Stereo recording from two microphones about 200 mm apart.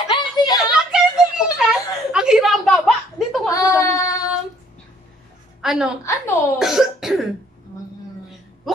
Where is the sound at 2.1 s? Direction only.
5° right (ahead or behind).